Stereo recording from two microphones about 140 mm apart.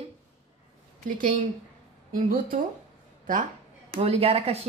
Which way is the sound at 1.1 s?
75° right (ahead or behind).